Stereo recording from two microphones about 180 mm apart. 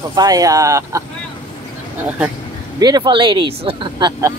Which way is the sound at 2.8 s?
25° right (ahead or behind).